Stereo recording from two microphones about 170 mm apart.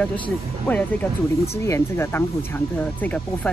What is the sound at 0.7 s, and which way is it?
Speech, 10° left (ahead or behind).